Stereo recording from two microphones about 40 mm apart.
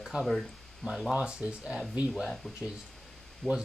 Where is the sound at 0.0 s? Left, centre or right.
Centre.